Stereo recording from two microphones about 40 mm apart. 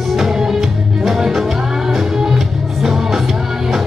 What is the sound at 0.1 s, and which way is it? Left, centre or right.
Music, centre.